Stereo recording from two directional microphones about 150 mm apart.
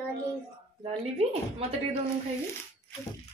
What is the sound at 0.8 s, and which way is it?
Speech, 40° right (ahead or behind).